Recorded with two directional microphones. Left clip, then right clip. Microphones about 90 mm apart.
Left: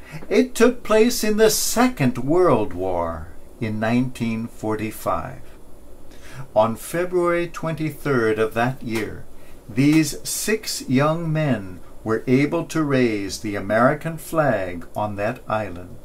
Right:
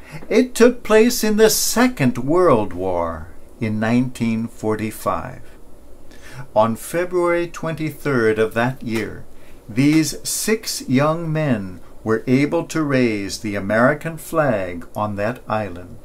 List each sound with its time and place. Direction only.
0.1 s speech: 40° right (ahead or behind)